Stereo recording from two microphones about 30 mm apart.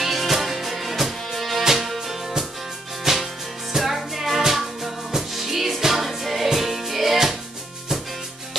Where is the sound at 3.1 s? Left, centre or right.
Centre.